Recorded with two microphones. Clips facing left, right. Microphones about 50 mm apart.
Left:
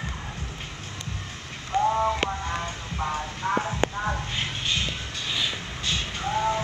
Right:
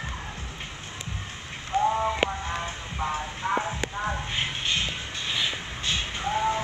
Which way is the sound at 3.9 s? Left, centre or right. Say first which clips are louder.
Left 1 dB; centre.